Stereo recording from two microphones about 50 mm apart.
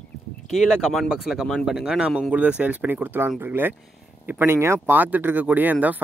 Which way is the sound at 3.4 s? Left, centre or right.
Right.